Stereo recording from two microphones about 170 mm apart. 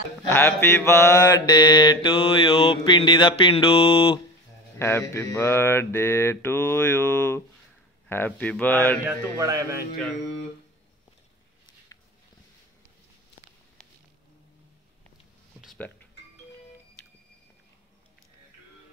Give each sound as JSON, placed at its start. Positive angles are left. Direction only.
{"t": 0.3, "sound": "mantra", "side_deg": 15}
{"t": 4.7, "sound": "mantra", "side_deg": 15}
{"t": 9.0, "sound": "speech", "side_deg": -20}